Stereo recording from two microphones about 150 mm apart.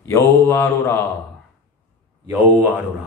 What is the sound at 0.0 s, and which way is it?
A man's voice, 20° left (ahead or behind).